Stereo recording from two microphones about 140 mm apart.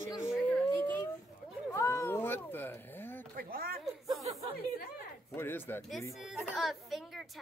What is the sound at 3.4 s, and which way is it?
Speech, 90° right.